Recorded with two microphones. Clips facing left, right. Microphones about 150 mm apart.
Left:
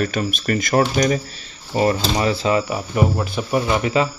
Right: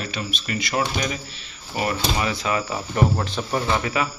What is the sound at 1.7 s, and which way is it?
Speech, 35° left (ahead or behind).